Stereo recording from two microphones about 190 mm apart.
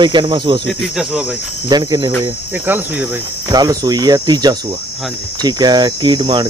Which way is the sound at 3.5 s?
20° right (ahead or behind).